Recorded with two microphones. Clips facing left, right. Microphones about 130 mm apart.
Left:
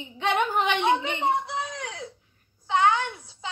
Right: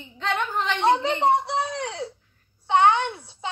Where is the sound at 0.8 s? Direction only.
35° right (ahead or behind).